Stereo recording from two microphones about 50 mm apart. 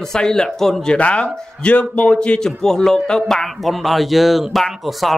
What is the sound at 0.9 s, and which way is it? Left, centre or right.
A man's voice, left.